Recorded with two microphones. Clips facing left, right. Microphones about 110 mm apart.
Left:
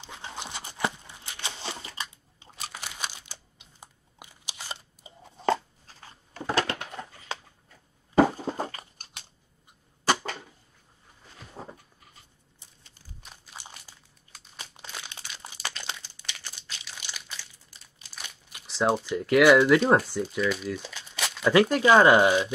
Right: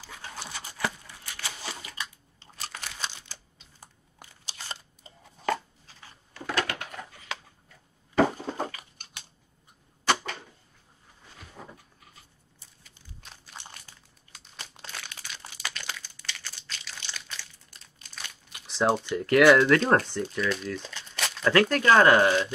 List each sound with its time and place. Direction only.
0.0 s a sound: 20° left (ahead or behind)
2.4 s crumpling: 5° left (ahead or behind)
5.1 s chewing: 10° left (ahead or behind)
6.3 s a sound: 30° left (ahead or behind)
6.7 s dog: 25° left (ahead or behind)
8.2 s a sound: 10° left (ahead or behind)
11.6 s goat: 35° left (ahead or behind)
13.2 s crumpling: 5° left (ahead or behind)
18.1 s speech: 5° left (ahead or behind)